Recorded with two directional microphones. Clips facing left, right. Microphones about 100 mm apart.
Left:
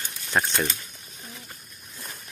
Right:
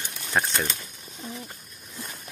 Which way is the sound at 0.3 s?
Centre (ahead or behind).